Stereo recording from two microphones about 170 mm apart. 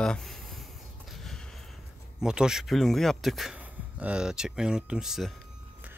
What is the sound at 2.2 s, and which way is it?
A man's voice, 5° right (ahead or behind).